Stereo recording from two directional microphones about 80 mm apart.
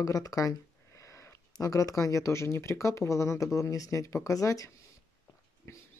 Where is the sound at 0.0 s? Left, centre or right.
Left.